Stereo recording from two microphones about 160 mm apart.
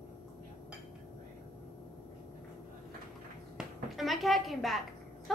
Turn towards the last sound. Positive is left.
turn(degrees=0)  # may be behind; listen again after turning